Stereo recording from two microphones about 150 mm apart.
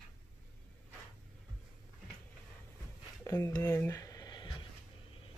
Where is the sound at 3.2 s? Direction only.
20° left (ahead or behind).